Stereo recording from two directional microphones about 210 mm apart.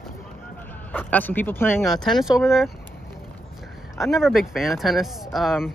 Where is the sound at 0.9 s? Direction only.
10° left (ahead or behind).